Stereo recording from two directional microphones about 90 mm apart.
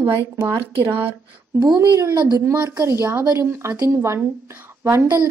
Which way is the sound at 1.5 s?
45° right (ahead or behind).